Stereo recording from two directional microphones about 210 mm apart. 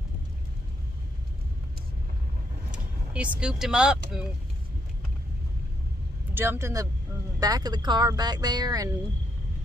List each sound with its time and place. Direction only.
2.7 s speech: 5° right (ahead or behind)
6.3 s speech: 10° right (ahead or behind)